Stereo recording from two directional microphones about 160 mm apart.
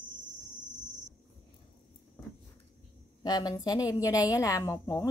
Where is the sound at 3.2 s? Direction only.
25° left (ahead or behind).